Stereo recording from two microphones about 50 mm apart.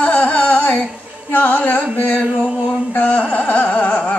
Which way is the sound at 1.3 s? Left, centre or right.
Left.